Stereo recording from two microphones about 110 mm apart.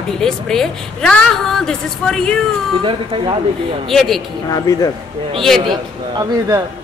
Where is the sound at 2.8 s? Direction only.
50° right (ahead or behind).